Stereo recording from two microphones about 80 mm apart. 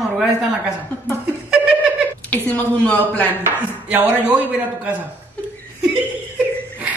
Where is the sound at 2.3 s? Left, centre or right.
Left.